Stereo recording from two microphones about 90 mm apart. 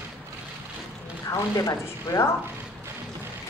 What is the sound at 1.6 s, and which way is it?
Speech, 40° left (ahead or behind).